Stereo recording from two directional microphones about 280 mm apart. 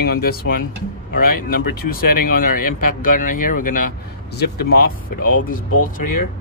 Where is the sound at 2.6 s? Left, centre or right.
Left.